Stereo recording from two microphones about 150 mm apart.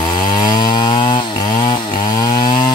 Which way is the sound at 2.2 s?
30° left (ahead or behind).